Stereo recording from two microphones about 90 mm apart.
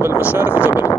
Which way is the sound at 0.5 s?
25° left (ahead or behind).